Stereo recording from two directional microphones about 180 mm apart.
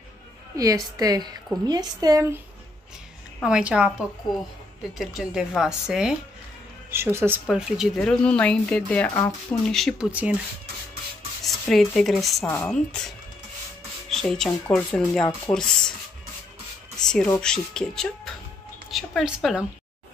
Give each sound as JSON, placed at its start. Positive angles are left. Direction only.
{"t": 0.6, "sound": "a woman's voice", "side_deg": -20}
{"t": 3.3, "sound": "speech", "side_deg": -5}
{"t": 11.6, "sound": "a woman's voice", "side_deg": 0}
{"t": 14.0, "sound": "speech", "side_deg": 5}
{"t": 17.4, "sound": "speech", "side_deg": 5}